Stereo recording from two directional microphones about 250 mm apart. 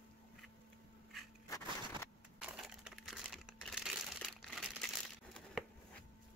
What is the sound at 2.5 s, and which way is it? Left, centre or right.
Crumpling, centre.